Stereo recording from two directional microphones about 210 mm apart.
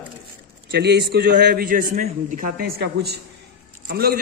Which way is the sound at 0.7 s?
50° right (ahead or behind).